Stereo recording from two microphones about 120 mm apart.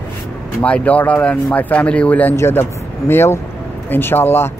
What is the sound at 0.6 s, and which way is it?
Speech, 10° left (ahead or behind).